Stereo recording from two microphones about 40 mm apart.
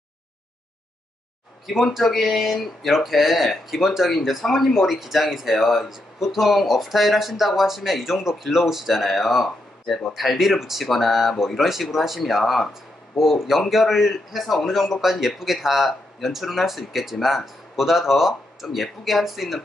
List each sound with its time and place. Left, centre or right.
1.7 s speech: centre
15.0 s speech: centre